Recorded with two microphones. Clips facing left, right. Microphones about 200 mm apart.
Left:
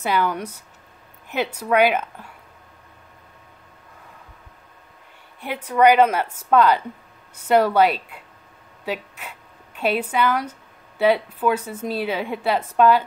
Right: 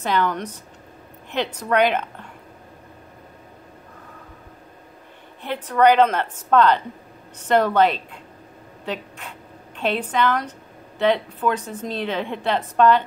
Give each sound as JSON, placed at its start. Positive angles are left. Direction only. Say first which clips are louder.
{"t": 0.0, "sound": "a woman's voice", "louder": "even", "side_deg": 10}
{"t": 5.4, "sound": "a woman's voice", "louder": "left 1 dB", "side_deg": 10}
{"t": 8.8, "sound": "a sound", "louder": "left 1 dB", "side_deg": 10}
{"t": 11.0, "sound": "a woman's voice", "louder": "left 1 dB", "side_deg": 10}